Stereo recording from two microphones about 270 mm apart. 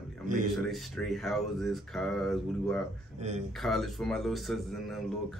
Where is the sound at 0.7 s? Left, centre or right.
Centre.